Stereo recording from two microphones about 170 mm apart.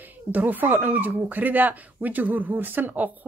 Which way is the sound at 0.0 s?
10° right (ahead or behind).